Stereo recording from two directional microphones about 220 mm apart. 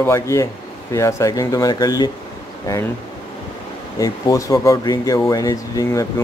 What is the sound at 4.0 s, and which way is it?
Speech, 15° left (ahead or behind).